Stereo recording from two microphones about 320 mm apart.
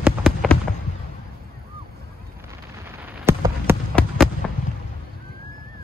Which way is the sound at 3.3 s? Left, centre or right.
Centre.